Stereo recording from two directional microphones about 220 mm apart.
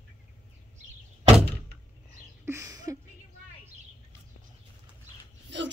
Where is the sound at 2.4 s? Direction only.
15° right (ahead or behind).